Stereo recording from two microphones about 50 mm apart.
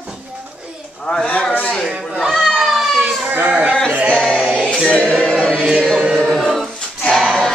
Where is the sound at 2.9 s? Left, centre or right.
Right.